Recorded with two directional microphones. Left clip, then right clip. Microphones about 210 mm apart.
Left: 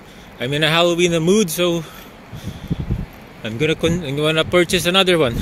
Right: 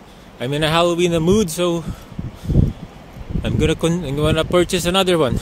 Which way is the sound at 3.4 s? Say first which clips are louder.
Even; 20° right (ahead or behind).